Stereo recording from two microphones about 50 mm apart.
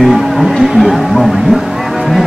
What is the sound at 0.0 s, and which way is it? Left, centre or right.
Speech, centre.